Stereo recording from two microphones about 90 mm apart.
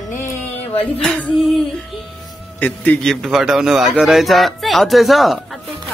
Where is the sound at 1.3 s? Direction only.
Centre (ahead or behind).